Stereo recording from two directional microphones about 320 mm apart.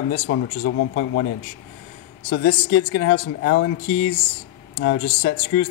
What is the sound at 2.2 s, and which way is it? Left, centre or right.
Speech, left.